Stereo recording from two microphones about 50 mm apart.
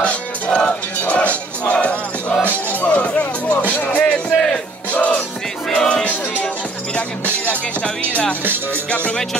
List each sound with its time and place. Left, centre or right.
0.0 s music: left
3.6 s music: left
4.0 s music: centre
4.9 s music: left
5.8 s music: centre
7.0 s music: left